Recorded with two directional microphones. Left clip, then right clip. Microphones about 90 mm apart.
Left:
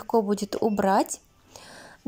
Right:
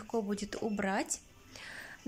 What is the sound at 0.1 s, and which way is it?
A woman's voice, 30° left (ahead or behind).